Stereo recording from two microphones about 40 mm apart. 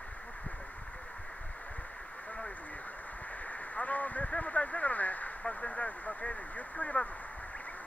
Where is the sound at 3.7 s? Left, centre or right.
Left.